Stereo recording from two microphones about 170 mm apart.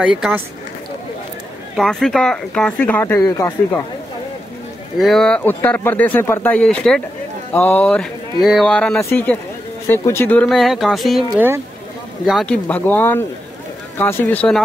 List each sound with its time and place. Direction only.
0.0 s speech: 5° right (ahead or behind)
1.8 s speech: centre (ahead or behind); by 3.5 s 20° left (ahead or behind)
4.9 s speech: centre (ahead or behind)
10.5 s speech: centre (ahead or behind)